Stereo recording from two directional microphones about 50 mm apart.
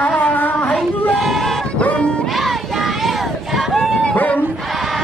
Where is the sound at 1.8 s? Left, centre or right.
Left.